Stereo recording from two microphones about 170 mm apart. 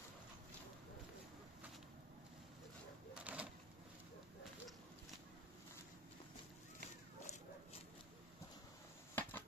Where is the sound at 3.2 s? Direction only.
5° right (ahead or behind).